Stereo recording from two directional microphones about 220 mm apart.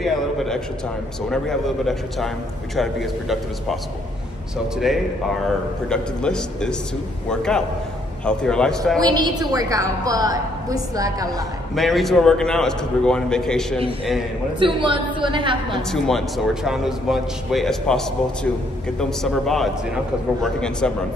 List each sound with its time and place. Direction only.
0.0 s a man's voice: centre (ahead or behind)
4.7 s a man's voice: centre (ahead or behind)
9.0 s a woman's voice: 15° right (ahead or behind)
11.7 s a man's voice: centre (ahead or behind)
14.6 s a woman's voice: 25° right (ahead or behind)
15.9 s a man's voice: centre (ahead or behind)